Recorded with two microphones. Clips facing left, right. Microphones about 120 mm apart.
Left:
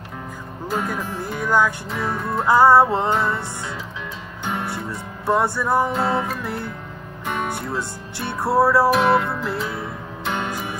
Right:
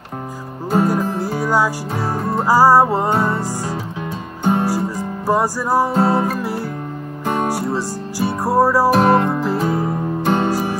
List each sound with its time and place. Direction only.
0.7 s music: 35° right (ahead or behind)
2.4 s music: 5° right (ahead or behind)
3.1 s music: 35° right (ahead or behind)
4.5 s music: 35° right (ahead or behind)
5.2 s music: 5° right (ahead or behind)
5.9 s music: 35° right (ahead or behind)
8.2 s music: centre (ahead or behind)
8.9 s music: 40° right (ahead or behind)